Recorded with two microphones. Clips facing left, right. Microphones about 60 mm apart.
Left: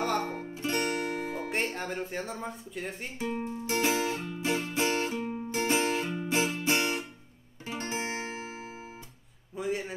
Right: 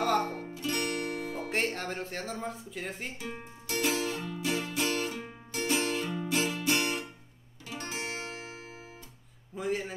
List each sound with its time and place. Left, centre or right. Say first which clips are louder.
0.0 s music: right 2 dB; centre
0.3 s music: left 2 dB; left
1.5 s speech: right 2 dB; centre
3.2 s music: left 8 dB; left
9.6 s a sound: even; centre